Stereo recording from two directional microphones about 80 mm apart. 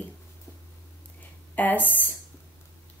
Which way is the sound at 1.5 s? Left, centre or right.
Left.